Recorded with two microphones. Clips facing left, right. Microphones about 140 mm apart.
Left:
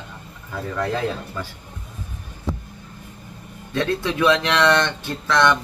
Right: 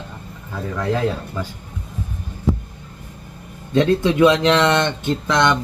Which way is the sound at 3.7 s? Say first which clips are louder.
Right 7 dB; 20° right (ahead or behind).